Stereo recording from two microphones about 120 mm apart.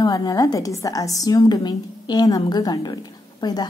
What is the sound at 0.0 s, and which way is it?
A woman's voice, 30° left (ahead or behind).